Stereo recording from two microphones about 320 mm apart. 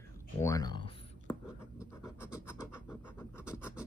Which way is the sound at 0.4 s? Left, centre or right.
Centre.